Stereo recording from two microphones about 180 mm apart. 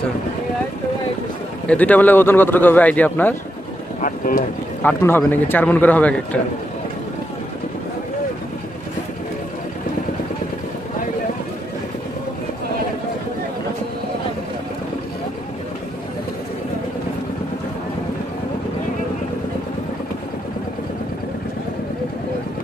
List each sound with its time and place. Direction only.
1.7 s speech: 10° left (ahead or behind)
4.0 s speech: 50° left (ahead or behind)
4.8 s speech: 10° left (ahead or behind)